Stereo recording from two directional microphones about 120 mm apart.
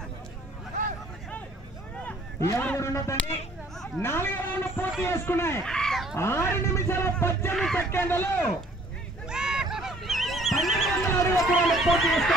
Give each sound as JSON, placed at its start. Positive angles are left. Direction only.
{"t": 2.5, "sound": "speech", "side_deg": 10}
{"t": 2.8, "sound": "speech", "side_deg": 25}
{"t": 5.6, "sound": "a sound", "side_deg": 5}
{"t": 6.1, "sound": "speech", "side_deg": 20}
{"t": 7.5, "sound": "speech", "side_deg": 5}
{"t": 7.9, "sound": "speech", "side_deg": 20}
{"t": 9.3, "sound": "neigh", "side_deg": -5}
{"t": 11.1, "sound": "a sound", "side_deg": 25}
{"t": 11.5, "sound": "neigh", "side_deg": 0}